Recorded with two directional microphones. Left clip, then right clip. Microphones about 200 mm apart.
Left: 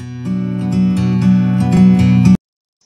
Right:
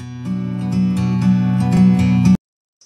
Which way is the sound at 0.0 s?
Centre (ahead or behind).